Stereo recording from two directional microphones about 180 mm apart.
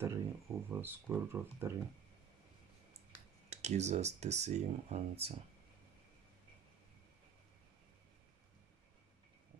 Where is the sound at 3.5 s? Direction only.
40° right (ahead or behind).